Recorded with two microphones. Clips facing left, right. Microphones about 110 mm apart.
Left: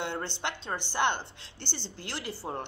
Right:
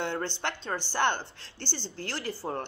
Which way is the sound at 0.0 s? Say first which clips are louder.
Right 3 dB; 15° left (ahead or behind).